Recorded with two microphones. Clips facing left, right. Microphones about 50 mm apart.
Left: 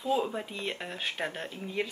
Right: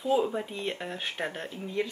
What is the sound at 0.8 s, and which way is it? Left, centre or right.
Speech, centre.